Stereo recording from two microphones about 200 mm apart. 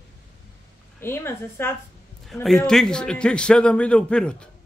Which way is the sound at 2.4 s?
Centre (ahead or behind).